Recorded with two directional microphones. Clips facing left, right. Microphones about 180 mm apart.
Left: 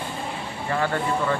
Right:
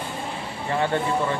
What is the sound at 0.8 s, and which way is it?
Speech, 20° right (ahead or behind).